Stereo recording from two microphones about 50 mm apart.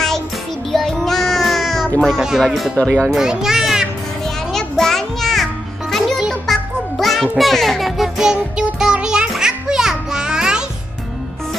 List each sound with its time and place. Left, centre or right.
0.7 s child singing: centre
2.1 s speech: centre
2.4 s speech: centre
3.1 s a child's voice: centre
4.2 s music: centre
8.3 s music: centre